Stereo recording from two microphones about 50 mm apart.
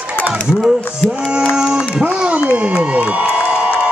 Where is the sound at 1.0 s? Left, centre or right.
Centre.